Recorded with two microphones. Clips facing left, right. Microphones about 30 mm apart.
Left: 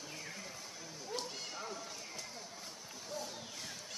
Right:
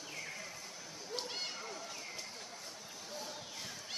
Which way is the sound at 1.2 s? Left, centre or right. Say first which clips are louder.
Right 4 dB; right.